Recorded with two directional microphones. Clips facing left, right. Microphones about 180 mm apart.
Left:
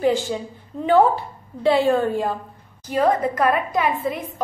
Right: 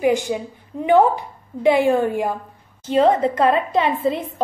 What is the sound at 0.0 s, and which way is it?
A woman's voice, 15° right (ahead or behind).